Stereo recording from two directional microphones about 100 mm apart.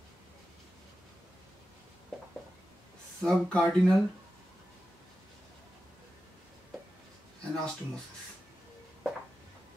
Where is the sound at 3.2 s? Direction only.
10° left (ahead or behind).